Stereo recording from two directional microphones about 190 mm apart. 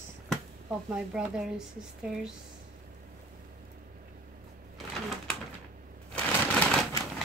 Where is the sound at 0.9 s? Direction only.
5° right (ahead or behind).